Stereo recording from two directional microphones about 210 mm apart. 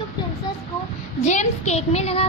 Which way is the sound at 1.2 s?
35° left (ahead or behind).